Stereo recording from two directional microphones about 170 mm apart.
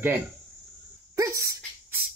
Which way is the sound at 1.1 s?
20° right (ahead or behind).